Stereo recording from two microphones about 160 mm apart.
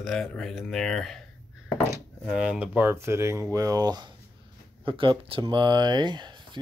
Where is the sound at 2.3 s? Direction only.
5° right (ahead or behind); by 6.4 s 30° right (ahead or behind).